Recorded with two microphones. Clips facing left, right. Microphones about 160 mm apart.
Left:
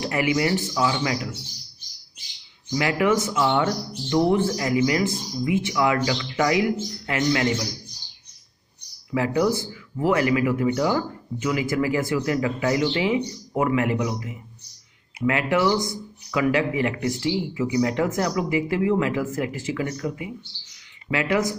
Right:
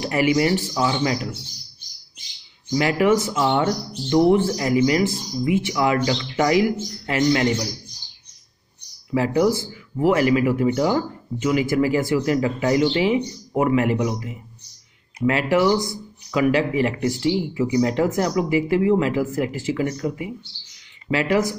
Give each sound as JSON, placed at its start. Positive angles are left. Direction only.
{"t": 0.1, "sound": "speech", "side_deg": -30}
{"t": 2.8, "sound": "speech", "side_deg": -25}
{"t": 9.1, "sound": "speech", "side_deg": -30}
{"t": 21.1, "sound": "speech", "side_deg": -30}